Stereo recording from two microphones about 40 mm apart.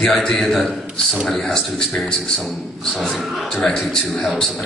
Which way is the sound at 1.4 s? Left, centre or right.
Centre.